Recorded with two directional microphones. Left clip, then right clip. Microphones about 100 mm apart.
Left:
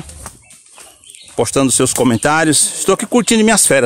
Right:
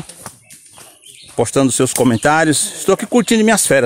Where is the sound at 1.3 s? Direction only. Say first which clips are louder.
Even; 30° left (ahead or behind).